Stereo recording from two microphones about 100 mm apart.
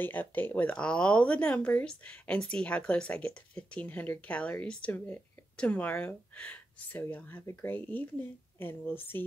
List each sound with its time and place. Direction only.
0.0 s speech: 20° left (ahead or behind)